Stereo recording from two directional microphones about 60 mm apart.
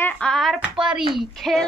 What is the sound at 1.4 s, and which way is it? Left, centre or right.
Speech, centre.